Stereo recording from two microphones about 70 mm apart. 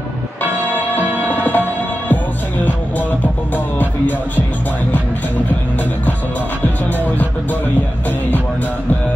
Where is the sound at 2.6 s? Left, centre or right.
Left.